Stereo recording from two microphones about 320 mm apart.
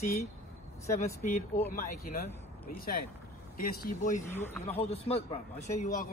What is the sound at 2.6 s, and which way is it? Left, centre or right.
A man's voice, left.